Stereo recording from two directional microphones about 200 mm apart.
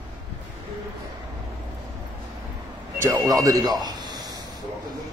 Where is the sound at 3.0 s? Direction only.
15° right (ahead or behind).